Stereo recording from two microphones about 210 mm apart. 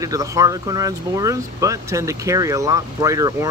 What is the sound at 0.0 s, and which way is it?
Speech, 15° right (ahead or behind).